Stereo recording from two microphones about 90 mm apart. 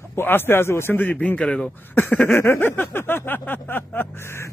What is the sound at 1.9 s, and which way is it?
Speech, 20° left (ahead or behind).